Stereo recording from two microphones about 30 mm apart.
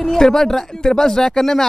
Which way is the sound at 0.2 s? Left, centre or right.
Centre.